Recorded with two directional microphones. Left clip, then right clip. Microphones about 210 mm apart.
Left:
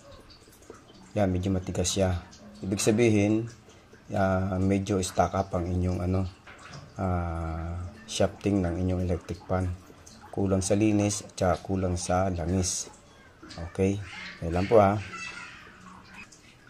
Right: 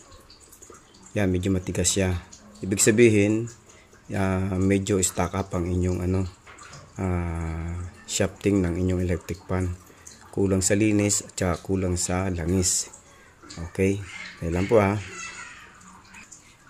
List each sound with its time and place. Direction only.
1.1 s speech: 30° right (ahead or behind)